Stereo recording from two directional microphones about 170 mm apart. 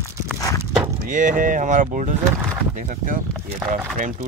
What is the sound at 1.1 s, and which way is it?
Speech, 50° right (ahead or behind).